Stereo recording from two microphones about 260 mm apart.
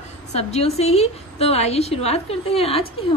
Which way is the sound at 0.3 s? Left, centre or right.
Left.